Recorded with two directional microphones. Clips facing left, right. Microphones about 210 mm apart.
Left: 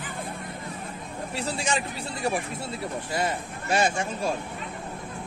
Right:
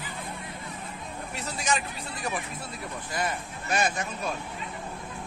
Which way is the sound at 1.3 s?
30° left (ahead or behind).